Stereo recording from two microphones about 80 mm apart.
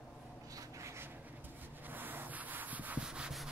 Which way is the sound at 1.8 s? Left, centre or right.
Right.